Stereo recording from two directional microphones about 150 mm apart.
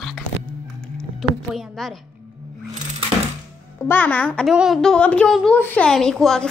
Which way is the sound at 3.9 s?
10° left (ahead or behind).